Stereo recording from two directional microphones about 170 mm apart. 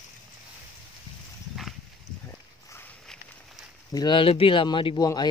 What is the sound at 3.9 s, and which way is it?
Speech, 25° left (ahead or behind).